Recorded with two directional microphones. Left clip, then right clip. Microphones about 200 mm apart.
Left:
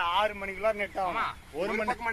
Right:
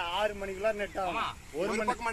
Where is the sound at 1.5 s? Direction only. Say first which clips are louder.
Even; 25° right (ahead or behind).